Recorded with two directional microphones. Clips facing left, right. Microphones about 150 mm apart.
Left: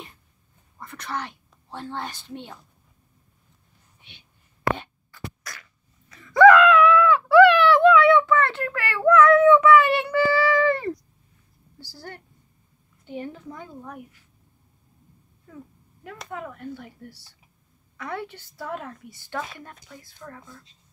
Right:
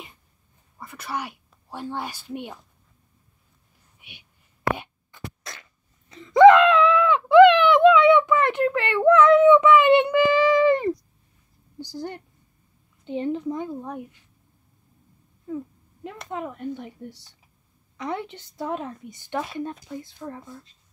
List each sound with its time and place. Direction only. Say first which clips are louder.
0.7 s speech: right 1 dB; 5° right (ahead or behind)
4.0 s a sound: right 3 dB; 10° right (ahead or behind)
11.8 s a woman's voice: right 8 dB; 20° right (ahead or behind)
15.5 s a woman's voice: right 11 dB; 20° right (ahead or behind)